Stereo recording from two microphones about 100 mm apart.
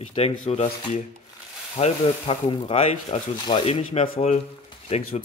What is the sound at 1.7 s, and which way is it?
Rub, 85° left.